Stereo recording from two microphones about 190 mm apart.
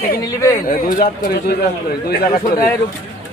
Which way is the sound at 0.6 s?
45° left (ahead or behind).